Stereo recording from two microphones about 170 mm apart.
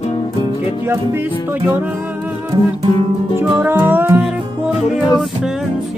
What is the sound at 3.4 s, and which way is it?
Music, 10° right (ahead or behind).